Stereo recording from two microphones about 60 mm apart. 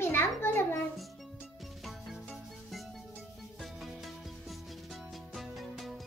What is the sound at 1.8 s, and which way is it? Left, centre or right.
Music, centre.